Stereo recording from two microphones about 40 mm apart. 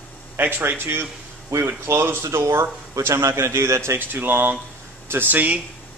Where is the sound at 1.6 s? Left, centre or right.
Right.